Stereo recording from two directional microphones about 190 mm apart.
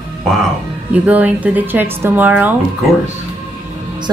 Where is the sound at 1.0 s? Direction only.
10° right (ahead or behind).